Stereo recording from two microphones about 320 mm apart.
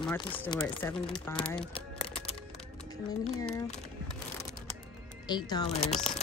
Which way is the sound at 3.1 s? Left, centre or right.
Centre.